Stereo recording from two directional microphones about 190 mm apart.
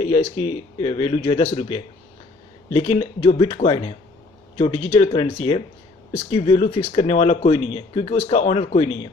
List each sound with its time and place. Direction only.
0.0 s speech: 30° left (ahead or behind)
4.9 s speech: 30° left (ahead or behind)